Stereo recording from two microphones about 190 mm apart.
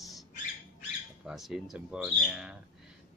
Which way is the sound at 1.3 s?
Centre (ahead or behind).